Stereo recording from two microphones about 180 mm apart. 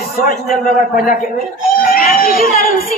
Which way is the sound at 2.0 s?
55° left (ahead or behind).